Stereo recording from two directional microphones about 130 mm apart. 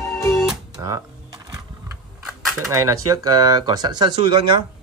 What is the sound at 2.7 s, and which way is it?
Speech, 25° right (ahead or behind).